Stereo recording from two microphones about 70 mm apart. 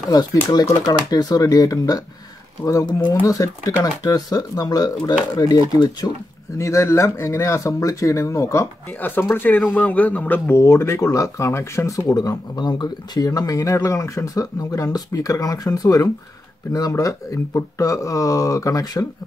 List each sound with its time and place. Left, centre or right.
0.1 s speech: left
2.9 s speech: left
3.3 s speech: left
6.6 s speech: left
9.3 s a man's voice: left
10.5 s speech: left
12.1 s speech: left